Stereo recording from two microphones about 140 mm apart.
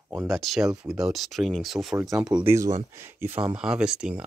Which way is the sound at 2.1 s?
30° right (ahead or behind).